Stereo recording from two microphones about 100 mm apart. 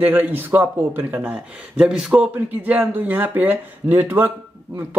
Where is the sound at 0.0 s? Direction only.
20° right (ahead or behind).